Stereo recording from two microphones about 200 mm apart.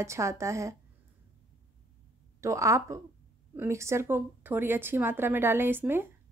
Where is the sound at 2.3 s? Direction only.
15° right (ahead or behind).